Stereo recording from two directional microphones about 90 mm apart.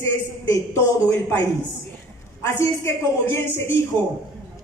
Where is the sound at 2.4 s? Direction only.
30° left (ahead or behind).